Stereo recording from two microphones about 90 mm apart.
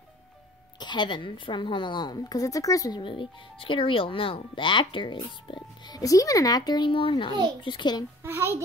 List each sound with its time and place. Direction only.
0.7 s a woman's voice: 55° left (ahead or behind); by 3.0 s 40° left (ahead or behind)
3.0 s a woman's voice: 75° left (ahead or behind); by 8.0 s 60° left (ahead or behind)
8.2 s a child's voice: 25° right (ahead or behind)